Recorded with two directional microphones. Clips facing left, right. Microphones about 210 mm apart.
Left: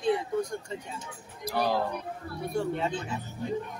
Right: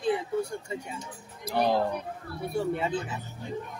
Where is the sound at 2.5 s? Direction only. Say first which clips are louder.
Right 1 dB; 5° right (ahead or behind).